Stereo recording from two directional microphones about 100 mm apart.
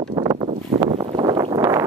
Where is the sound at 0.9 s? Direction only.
50° right (ahead or behind).